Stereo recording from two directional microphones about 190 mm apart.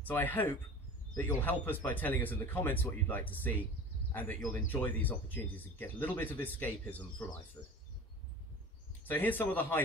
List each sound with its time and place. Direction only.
0.0 s speech: 10° left (ahead or behind)
7.6 s speech: 25° left (ahead or behind)
9.0 s speech: 10° left (ahead or behind)